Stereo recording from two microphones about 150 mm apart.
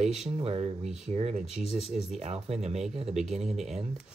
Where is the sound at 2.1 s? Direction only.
45° right (ahead or behind).